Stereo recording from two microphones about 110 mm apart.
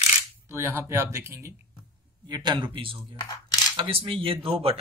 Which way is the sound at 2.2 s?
40° right (ahead or behind).